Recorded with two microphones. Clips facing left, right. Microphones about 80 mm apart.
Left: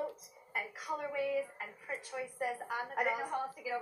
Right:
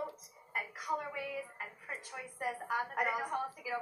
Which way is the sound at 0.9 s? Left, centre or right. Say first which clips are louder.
Right 3 dB; centre.